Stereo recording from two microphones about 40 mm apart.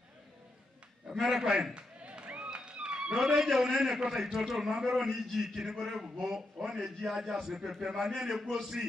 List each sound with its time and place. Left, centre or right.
1.2 s music: centre
3.4 s a man's voice: centre